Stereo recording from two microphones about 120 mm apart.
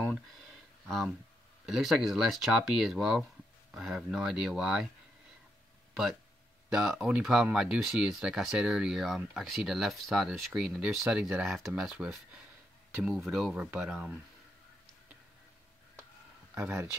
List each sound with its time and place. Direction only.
0.8 s speech: centre (ahead or behind)
6.7 s speech: 5° right (ahead or behind)
16.5 s speech: 10° right (ahead or behind)